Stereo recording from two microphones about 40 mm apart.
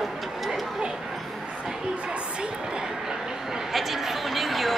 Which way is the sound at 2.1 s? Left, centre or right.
Right.